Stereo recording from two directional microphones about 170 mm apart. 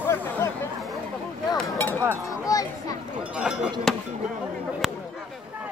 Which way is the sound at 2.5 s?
20° left (ahead or behind).